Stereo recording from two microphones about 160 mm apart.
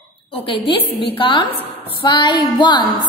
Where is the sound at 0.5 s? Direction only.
35° left (ahead or behind).